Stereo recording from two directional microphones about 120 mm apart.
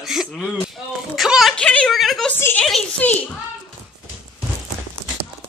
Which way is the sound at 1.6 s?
10° left (ahead or behind).